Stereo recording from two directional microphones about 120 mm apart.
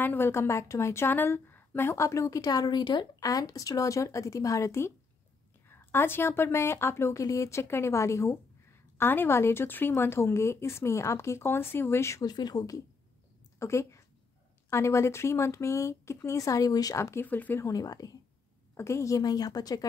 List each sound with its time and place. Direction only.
0.0 s a woman's voice: 20° left (ahead or behind)
17.6 s a woman's voice: 30° left (ahead or behind)